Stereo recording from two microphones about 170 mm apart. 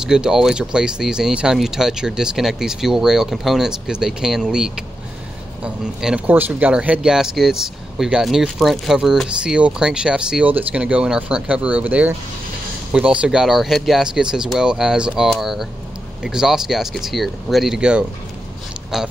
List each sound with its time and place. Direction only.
0.0 s speech: 5° right (ahead or behind)